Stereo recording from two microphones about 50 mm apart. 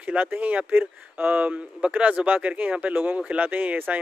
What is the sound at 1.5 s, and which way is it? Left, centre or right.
Speech, right.